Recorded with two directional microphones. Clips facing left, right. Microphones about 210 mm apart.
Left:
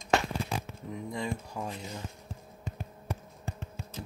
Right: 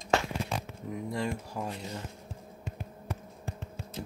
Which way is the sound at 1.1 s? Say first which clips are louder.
Right 1 dB; 5° right (ahead or behind).